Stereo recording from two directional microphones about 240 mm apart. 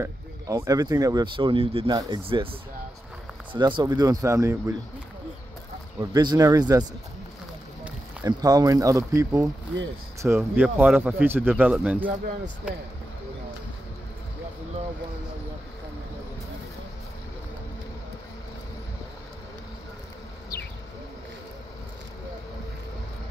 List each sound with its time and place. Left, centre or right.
0.0 s speech: centre
3.5 s speech: centre
5.9 s speech: centre